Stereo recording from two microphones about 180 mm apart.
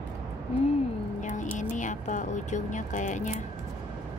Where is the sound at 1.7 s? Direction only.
45° left (ahead or behind).